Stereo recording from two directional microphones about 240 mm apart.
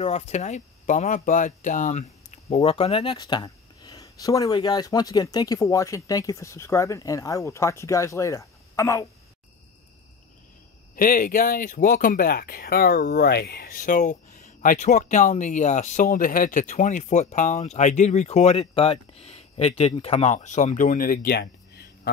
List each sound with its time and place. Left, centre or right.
0.0 s speech: left
11.0 s speech: left